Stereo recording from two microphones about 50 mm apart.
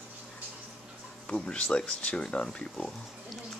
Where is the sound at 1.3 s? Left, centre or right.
Left.